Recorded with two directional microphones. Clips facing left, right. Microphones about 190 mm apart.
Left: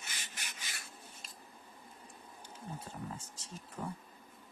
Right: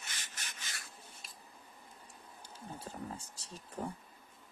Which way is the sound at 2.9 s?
35° right (ahead or behind).